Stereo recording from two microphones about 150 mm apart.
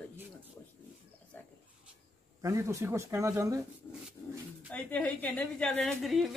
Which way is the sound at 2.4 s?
20° right (ahead or behind).